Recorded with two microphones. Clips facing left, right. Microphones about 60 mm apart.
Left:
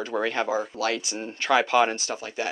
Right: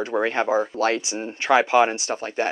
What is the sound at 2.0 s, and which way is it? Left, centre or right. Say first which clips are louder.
Speech: right 5 dB; right.